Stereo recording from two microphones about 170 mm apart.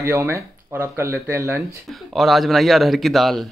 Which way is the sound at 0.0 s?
15° right (ahead or behind).